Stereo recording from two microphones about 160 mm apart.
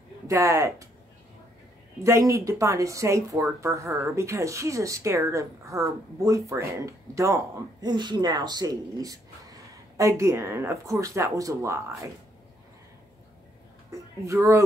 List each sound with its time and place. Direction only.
0.3 s speech: 20° right (ahead or behind)
2.0 s speech: 20° right (ahead or behind)
14.2 s speech: 20° right (ahead or behind)